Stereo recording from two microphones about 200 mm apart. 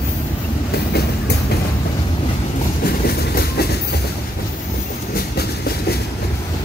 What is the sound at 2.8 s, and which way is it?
Train, 50° left (ahead or behind).